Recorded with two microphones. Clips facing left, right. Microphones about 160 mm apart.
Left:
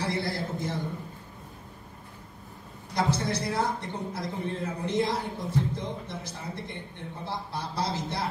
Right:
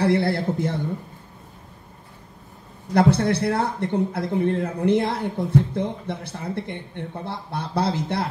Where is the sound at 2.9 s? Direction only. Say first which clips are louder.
Right 9 dB; 60° right (ahead or behind).